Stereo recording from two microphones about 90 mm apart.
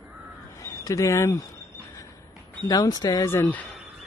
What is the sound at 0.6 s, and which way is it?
Speech, 35° left (ahead or behind).